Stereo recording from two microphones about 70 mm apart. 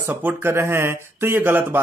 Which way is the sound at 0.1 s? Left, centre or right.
Right.